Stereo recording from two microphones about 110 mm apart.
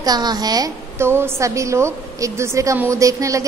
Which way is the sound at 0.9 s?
20° right (ahead or behind).